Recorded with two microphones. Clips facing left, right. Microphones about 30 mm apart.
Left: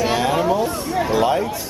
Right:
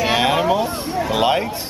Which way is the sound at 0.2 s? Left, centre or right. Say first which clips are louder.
Right 1 dB; right.